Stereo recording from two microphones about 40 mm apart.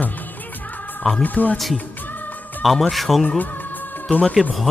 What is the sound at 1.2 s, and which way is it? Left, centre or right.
Speech, left.